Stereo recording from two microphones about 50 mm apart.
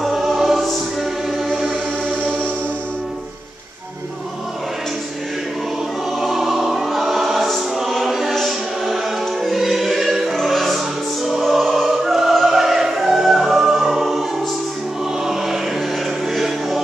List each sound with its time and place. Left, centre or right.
0.0 s music: centre
6.2 s choir: centre
10.3 s music: centre
11.2 s opera: centre
15.2 s music: centre